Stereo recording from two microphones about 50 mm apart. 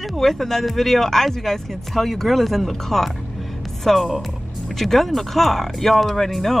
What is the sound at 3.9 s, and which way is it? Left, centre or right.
Music, centre.